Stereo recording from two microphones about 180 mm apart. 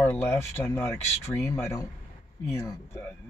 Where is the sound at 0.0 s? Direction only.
10° left (ahead or behind).